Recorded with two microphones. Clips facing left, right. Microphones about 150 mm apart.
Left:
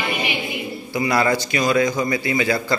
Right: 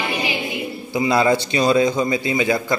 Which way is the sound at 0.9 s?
20° right (ahead or behind).